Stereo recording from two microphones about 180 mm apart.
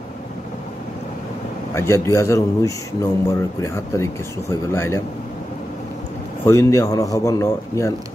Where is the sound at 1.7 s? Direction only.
15° left (ahead or behind).